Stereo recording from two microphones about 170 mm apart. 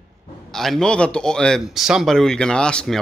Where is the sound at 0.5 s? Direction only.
Centre (ahead or behind).